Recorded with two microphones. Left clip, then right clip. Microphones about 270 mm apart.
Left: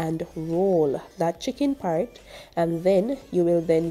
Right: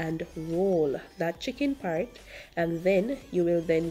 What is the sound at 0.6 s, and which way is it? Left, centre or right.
A woman's voice, centre.